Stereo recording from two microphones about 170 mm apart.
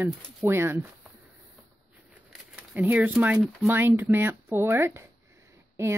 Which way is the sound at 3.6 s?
15° right (ahead or behind).